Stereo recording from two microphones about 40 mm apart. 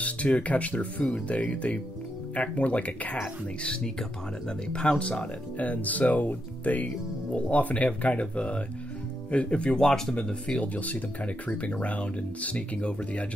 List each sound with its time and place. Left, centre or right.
0.0 s speech: left
4.7 s speech: left
5.6 s speech: left
7.3 s speech: left
9.8 s speech: centre
10.6 s speech: left